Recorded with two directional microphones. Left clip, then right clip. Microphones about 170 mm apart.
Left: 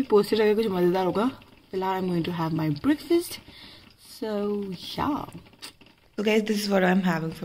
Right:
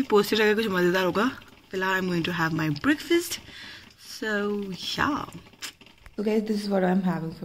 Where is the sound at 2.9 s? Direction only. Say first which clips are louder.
Even; 10° left (ahead or behind).